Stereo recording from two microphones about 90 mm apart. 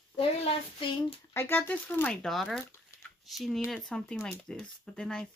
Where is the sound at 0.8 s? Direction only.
70° left (ahead or behind).